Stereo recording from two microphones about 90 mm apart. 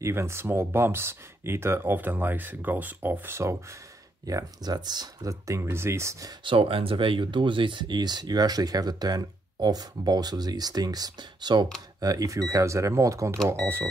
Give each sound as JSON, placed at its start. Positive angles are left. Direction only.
{"t": 0.0, "sound": "speech", "side_deg": -30}
{"t": 4.3, "sound": "speech", "side_deg": -45}
{"t": 6.4, "sound": "speech", "side_deg": -85}
{"t": 12.0, "sound": "speech", "side_deg": -45}